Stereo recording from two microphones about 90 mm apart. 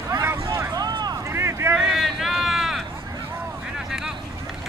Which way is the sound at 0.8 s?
50° right (ahead or behind).